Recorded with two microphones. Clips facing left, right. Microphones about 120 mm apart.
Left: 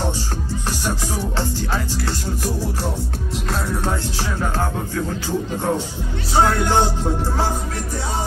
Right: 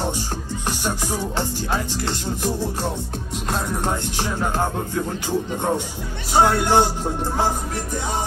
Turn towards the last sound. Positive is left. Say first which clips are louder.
# even
turn(degrees=-15)  # may be behind; listen again after turning